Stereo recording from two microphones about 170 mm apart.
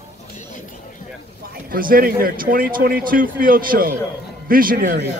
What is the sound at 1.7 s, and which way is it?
A man's voice, 55° right (ahead or behind).